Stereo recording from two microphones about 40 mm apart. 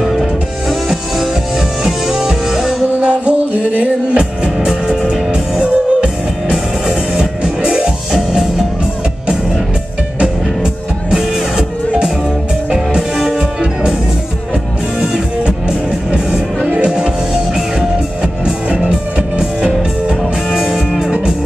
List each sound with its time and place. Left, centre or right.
0.0 s music: centre
3.0 s music: right
4.6 s music: centre
7.2 s music: centre
10.2 s music: centre
16.1 s music: right
20.5 s music: centre